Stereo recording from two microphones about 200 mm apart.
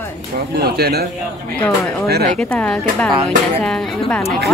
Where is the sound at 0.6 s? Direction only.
50° right (ahead or behind).